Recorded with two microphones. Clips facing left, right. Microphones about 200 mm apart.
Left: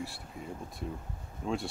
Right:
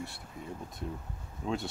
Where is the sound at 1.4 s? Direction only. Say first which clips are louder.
Even; centre (ahead or behind).